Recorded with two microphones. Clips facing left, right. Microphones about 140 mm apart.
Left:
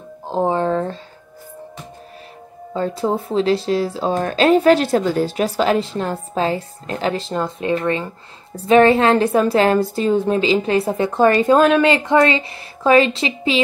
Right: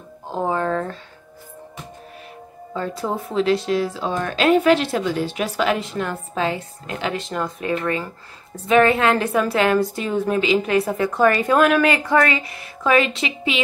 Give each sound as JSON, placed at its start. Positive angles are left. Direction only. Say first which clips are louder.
{"t": 0.3, "sound": "a woman's voice", "louder": "left 4 dB", "side_deg": 25}
{"t": 2.7, "sound": "a woman's voice", "louder": "left 5 dB", "side_deg": 30}